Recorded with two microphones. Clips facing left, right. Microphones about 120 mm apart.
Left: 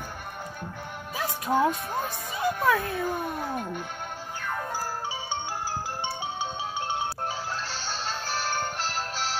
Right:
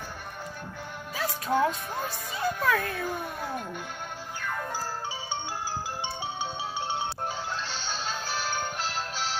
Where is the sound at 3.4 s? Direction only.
10° left (ahead or behind).